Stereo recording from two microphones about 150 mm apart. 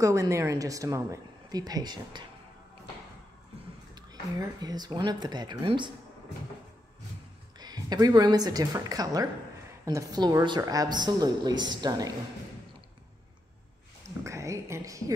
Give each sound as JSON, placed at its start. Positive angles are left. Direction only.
{"t": 0.0, "sound": "a woman's voice", "side_deg": -20}
{"t": 3.9, "sound": "a woman's voice", "side_deg": -25}
{"t": 7.5, "sound": "a woman's voice", "side_deg": -25}
{"t": 14.2, "sound": "a woman's voice", "side_deg": -20}